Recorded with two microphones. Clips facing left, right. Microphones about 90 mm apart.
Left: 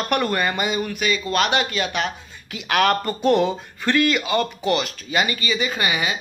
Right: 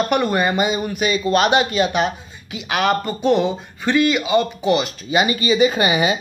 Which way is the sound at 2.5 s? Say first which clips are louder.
Even; 5° right (ahead or behind).